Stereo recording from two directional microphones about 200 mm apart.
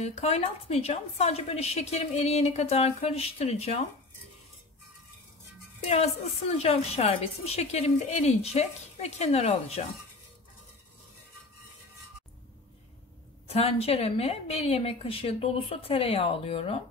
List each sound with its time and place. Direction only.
0.0 s a woman's voice: 35° left (ahead or behind)
5.9 s a woman's voice: 35° left (ahead or behind)
13.5 s a woman's voice: 30° left (ahead or behind)